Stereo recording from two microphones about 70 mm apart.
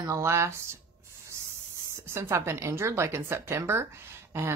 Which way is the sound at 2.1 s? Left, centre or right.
Right.